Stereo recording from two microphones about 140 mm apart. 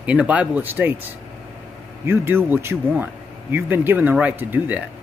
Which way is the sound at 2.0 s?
15° right (ahead or behind).